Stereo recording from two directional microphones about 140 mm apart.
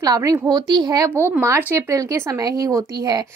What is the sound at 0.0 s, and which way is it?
Speech, 25° right (ahead or behind).